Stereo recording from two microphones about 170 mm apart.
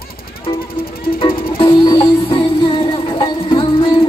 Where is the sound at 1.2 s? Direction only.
30° left (ahead or behind).